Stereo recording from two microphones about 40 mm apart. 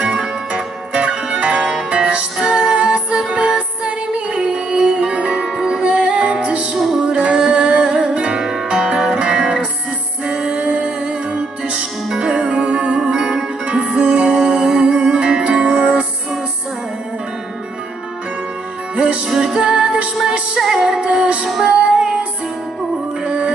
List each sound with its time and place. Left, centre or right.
0.9 s zither: right
1.9 s music: right
8.4 s music: centre
13.7 s music: right
14.3 s music: centre
18.9 s music: right
19.3 s music: centre
21.0 s music: right